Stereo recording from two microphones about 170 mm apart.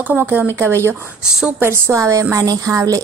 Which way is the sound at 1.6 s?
15° right (ahead or behind).